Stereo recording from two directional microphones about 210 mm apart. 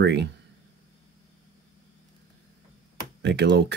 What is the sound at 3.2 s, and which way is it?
Speech, 55° right (ahead or behind).